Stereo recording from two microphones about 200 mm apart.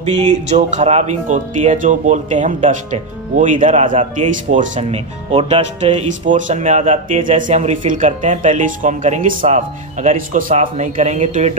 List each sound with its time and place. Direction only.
0.0 s speech: 35° right (ahead or behind)